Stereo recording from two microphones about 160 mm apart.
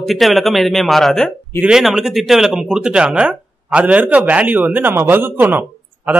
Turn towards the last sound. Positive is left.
turn(degrees=-10)  # may be behind; listen again after turning